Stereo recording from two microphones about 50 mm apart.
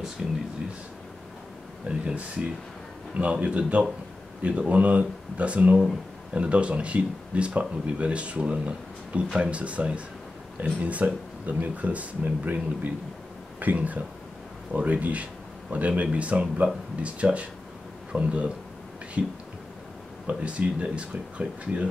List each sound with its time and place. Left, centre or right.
0.2 s speech: centre
1.9 s speech: right
13.6 s speech: right
20.2 s speech: right